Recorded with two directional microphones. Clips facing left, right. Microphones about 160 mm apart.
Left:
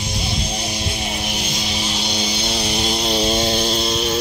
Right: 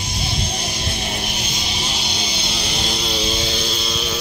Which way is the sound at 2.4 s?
50° left (ahead or behind).